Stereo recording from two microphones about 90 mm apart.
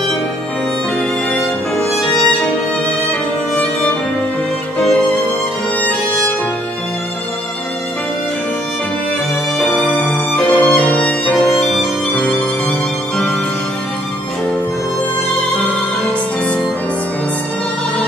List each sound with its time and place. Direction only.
1.3 s music: 5° left (ahead or behind)
4.7 s music: 5° left (ahead or behind)
9.9 s music: 10° left (ahead or behind)
11.7 s music: centre (ahead or behind)
12.2 s music: 15° left (ahead or behind)